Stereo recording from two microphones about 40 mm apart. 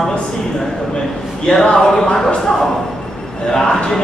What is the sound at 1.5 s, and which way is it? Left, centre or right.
Speech, left.